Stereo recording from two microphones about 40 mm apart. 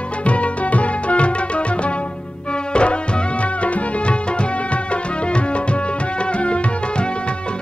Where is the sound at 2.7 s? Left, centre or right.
Left.